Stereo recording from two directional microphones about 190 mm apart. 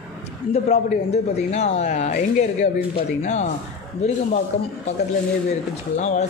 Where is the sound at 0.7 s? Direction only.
35° left (ahead or behind).